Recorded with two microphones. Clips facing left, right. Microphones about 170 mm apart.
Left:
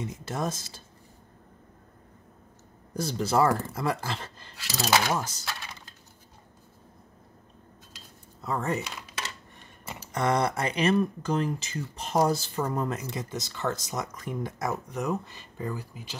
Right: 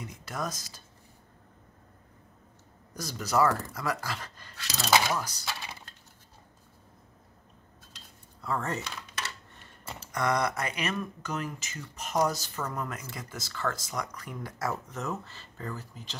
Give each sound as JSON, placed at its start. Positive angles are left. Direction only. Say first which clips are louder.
{"t": 0.0, "sound": "speech", "louder": "left 4 dB", "side_deg": 25}
{"t": 2.9, "sound": "speech", "louder": "left 4 dB", "side_deg": 30}
{"t": 4.6, "sound": "speech", "louder": "left 1 dB", "side_deg": 5}
{"t": 5.1, "sound": "speech", "louder": "left 3 dB", "side_deg": 25}
{"t": 8.4, "sound": "speech", "louder": "left 3 dB", "side_deg": 20}
{"t": 10.1, "sound": "speech", "louder": "left 3 dB", "side_deg": 30}